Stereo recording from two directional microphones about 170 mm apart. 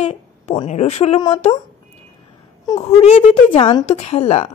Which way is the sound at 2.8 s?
35° left (ahead or behind).